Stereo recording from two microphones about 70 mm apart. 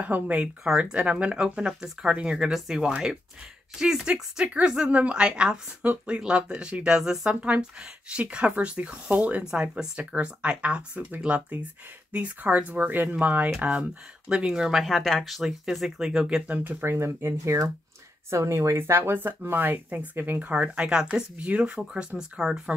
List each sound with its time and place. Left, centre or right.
0.0 s speech: right
16.4 s speech: right
16.8 s speech: right; by 22.6 s centre